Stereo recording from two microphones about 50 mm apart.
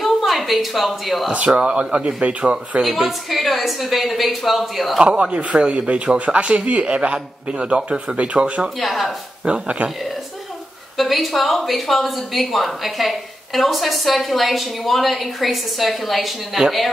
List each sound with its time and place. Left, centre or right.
0.0 s a woman's voice: centre
1.3 s a man's voice: right
2.8 s speech: centre
5.0 s a man's voice: right
8.3 s a man's voice: right
8.7 s speech: centre
9.4 s a man's voice: right
11.0 s speech: centre